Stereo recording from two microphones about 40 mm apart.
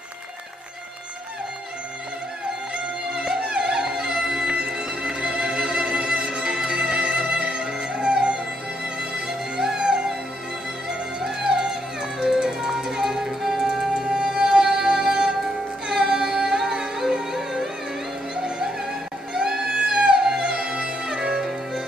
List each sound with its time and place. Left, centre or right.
3.3 s music: centre
9.6 s music: centre
11.2 s music: centre